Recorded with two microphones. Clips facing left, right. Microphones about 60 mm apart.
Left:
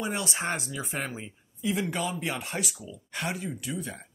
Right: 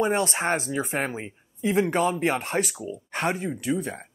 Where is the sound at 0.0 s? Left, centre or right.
Right.